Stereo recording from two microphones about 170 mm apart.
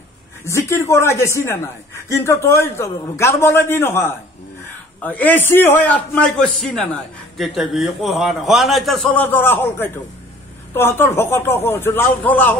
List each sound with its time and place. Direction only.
0.5 s a man's voice: 15° left (ahead or behind)